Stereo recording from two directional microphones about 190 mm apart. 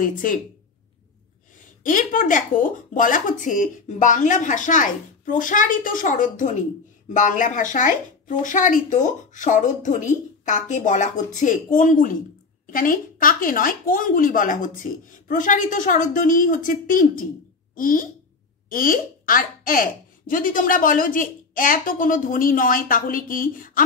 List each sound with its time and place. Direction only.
0.0 s a woman's voice: 45° left (ahead or behind)
1.8 s a woman's voice: 45° left (ahead or behind)